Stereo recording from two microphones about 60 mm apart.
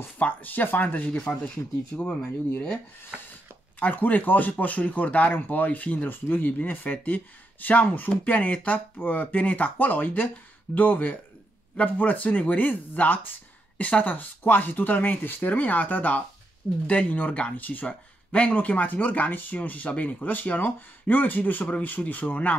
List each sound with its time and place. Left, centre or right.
0.2 s speech: left
1.0 s speech: centre
3.8 s speech: left